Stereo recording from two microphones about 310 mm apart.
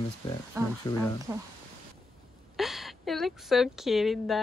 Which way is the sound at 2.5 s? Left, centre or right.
Centre.